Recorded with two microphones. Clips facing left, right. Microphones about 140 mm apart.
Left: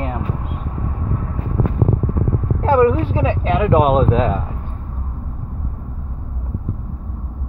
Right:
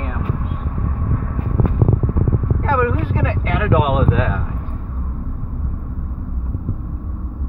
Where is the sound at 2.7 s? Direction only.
25° left (ahead or behind).